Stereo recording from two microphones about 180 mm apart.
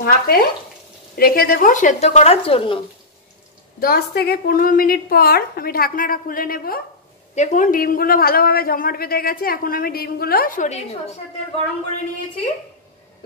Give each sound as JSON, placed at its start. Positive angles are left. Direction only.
{"t": 0.0, "sound": "a woman's voice", "side_deg": 55}
{"t": 3.8, "sound": "a woman's voice", "side_deg": 60}
{"t": 7.3, "sound": "a man's voice", "side_deg": 45}